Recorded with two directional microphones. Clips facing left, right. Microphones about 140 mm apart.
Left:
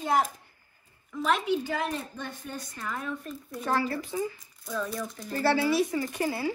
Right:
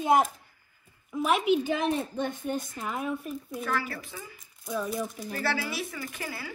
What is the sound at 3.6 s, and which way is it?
Speech, 30° left (ahead or behind).